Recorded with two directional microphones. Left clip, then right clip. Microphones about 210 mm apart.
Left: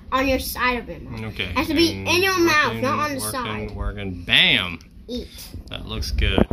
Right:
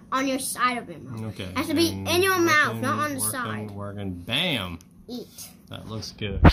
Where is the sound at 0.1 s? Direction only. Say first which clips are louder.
Left 5 dB; 20° left (ahead or behind).